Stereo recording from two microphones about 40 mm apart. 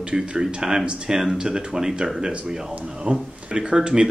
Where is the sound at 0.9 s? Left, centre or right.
Right.